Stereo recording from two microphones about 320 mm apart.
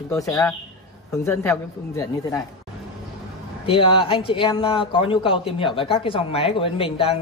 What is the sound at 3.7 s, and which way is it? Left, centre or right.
A man's voice, centre.